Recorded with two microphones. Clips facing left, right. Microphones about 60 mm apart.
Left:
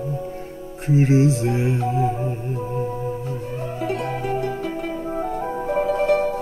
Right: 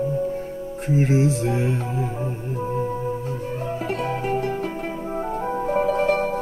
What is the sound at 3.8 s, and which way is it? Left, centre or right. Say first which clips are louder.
Music: left 2 dB; right.